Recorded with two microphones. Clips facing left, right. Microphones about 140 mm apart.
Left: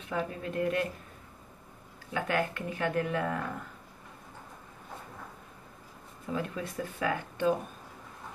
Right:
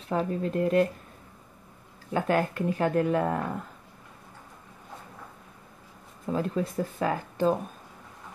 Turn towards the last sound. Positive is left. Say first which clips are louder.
# right 3 dB
turn(degrees=-35)  # may be behind; listen again after turning